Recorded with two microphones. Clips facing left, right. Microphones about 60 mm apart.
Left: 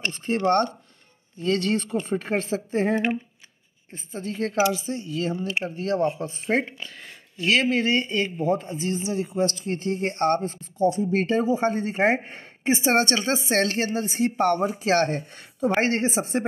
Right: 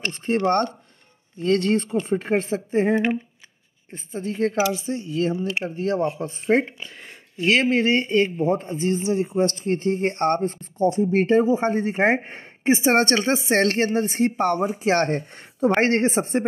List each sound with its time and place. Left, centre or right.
0.1 s speech: right
1.4 s speech: right
4.1 s speech: right
11.1 s speech: right
14.3 s speech: centre
15.0 s speech: right